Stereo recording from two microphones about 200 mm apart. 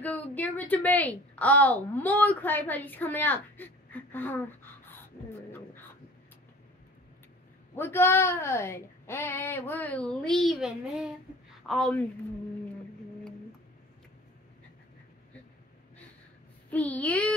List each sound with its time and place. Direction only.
0.0 s a woman's voice: 10° left (ahead or behind)
7.7 s a woman's voice: 10° left (ahead or behind)
16.7 s a woman's voice: 5° left (ahead or behind)